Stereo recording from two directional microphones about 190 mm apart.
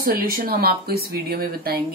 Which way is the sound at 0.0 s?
55° right (ahead or behind).